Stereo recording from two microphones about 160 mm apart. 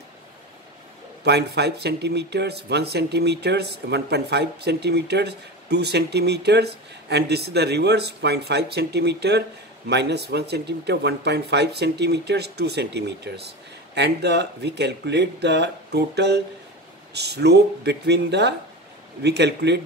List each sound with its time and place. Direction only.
1.2 s speech: 90° right